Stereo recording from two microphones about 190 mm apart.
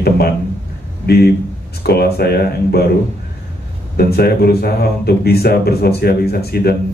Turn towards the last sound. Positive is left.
turn(degrees=55)  # may be behind; listen again after turning